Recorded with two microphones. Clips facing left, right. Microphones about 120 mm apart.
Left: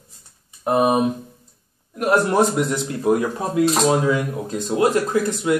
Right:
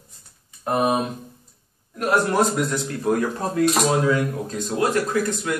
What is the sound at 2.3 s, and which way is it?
Speech, 20° left (ahead or behind).